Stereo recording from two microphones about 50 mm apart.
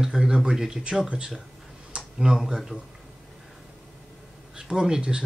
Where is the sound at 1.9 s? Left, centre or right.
Right.